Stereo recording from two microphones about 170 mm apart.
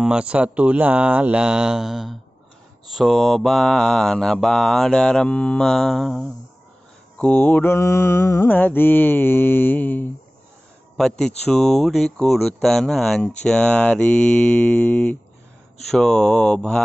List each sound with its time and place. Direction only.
0.0 s speech: 5° right (ahead or behind)
2.9 s mantra: centre (ahead or behind)